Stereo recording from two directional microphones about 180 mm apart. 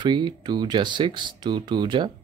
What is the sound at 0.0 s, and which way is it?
Speech, 25° right (ahead or behind).